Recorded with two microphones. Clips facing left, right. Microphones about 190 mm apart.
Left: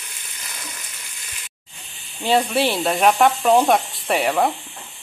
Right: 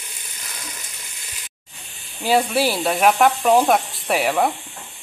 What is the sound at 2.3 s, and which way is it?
Frying, centre (ahead or behind).